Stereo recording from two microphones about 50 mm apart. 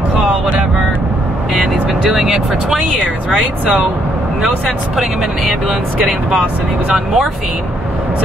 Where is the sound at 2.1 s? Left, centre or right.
Centre.